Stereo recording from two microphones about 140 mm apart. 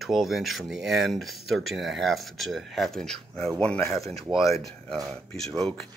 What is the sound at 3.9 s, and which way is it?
Speech, centre (ahead or behind).